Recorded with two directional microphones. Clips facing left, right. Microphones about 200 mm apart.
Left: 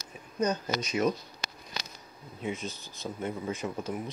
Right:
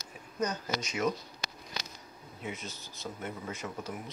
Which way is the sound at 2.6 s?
15° left (ahead or behind).